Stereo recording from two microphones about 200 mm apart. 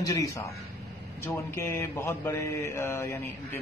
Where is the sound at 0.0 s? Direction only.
15° left (ahead or behind).